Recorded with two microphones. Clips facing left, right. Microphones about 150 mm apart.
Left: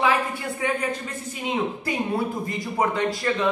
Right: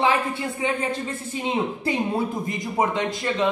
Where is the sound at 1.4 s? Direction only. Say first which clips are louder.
Right 1 dB; 25° right (ahead or behind).